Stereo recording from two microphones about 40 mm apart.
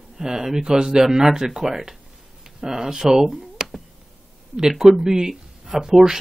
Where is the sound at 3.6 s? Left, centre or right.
Centre.